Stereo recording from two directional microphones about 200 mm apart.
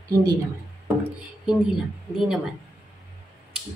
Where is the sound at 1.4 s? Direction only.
5° right (ahead or behind).